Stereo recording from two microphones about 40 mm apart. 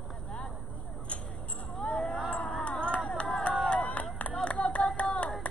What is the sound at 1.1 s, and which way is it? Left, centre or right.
Vehicle, left.